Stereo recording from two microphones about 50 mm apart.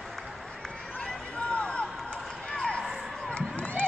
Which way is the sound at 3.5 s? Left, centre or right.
Left.